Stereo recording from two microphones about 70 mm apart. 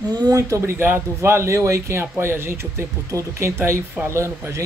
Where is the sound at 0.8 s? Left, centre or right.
Right.